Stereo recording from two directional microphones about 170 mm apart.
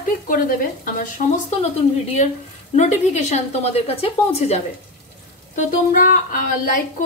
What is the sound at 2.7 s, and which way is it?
Speech, 45° left (ahead or behind).